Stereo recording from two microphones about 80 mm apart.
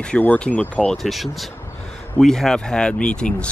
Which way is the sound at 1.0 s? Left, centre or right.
Centre.